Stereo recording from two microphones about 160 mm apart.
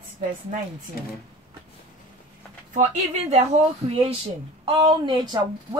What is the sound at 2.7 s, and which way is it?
A woman's voice, 45° right (ahead or behind).